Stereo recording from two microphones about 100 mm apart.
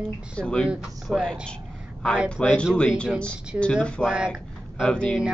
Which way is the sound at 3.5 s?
15° right (ahead or behind).